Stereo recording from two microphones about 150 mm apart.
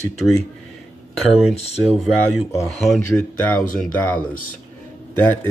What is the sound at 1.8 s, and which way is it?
Speech, centre (ahead or behind).